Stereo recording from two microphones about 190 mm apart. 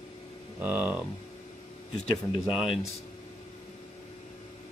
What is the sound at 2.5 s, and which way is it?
Speech, 5° right (ahead or behind).